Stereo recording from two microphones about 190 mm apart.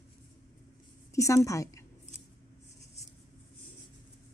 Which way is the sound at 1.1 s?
15° left (ahead or behind).